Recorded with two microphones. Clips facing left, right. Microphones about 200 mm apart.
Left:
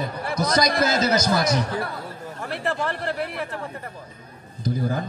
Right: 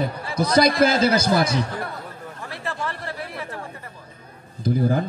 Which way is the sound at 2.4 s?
60° left (ahead or behind).